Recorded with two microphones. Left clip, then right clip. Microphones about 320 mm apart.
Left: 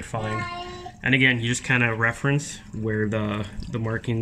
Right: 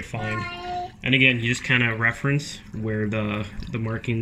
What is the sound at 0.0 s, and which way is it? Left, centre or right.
Child singing, centre.